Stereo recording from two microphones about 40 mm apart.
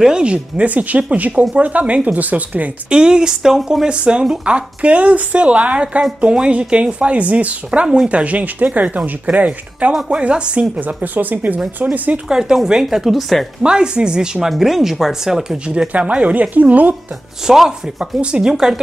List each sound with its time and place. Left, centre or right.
0.0 s speech: right
2.9 s speech: right
3.8 s speech: right
10.8 s speech: right
12.3 s speech: centre
13.6 s speech: right
14.6 s speech: centre
15.6 s speech: right
17.5 s speech: centre